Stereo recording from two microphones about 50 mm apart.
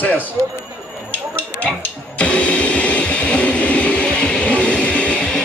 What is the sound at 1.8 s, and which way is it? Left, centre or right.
Blender, left.